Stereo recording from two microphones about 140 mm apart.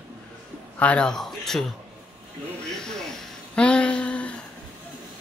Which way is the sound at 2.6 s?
5° left (ahead or behind).